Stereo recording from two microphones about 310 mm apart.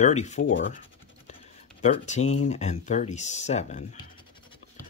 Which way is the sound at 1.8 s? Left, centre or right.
Left.